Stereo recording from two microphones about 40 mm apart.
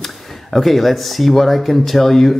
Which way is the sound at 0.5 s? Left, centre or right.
Centre.